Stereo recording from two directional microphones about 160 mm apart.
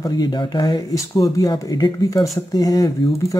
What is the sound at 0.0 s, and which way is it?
Speech, 25° left (ahead or behind).